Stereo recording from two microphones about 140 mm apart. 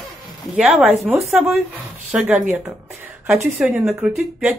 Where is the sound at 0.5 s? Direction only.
10° right (ahead or behind).